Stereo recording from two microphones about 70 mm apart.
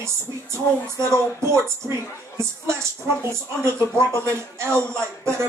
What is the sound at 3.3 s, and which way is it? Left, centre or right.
Speech, right.